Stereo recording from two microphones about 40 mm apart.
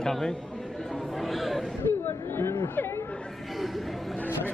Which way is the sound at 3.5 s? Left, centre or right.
Centre.